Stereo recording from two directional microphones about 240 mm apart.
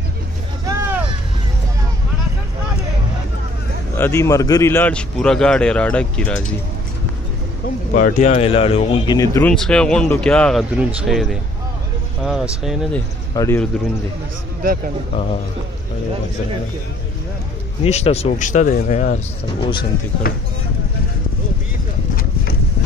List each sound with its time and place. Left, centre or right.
0.7 s vehicle: centre
3.9 s a man's voice: centre
7.9 s a man's voice: left; by 13.0 s centre
13.3 s speech: centre
17.8 s speech: left
19.6 s speech: centre
22.1 s clip-clop: left